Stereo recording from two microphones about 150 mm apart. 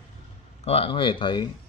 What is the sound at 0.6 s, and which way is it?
Speech, 40° left (ahead or behind).